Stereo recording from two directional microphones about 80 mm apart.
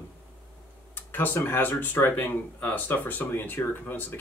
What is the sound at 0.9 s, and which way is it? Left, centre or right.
Speech, left.